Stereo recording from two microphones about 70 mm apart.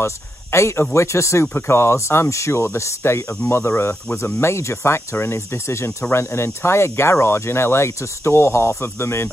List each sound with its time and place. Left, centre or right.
0.0 s speech: left